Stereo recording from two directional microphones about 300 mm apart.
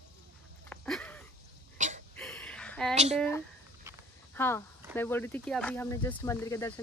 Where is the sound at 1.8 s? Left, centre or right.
Right.